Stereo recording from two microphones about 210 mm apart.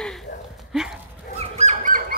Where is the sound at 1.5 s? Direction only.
35° right (ahead or behind).